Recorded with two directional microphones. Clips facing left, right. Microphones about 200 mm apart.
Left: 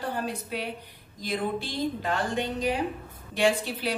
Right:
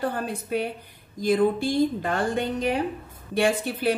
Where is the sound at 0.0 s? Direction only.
50° right (ahead or behind).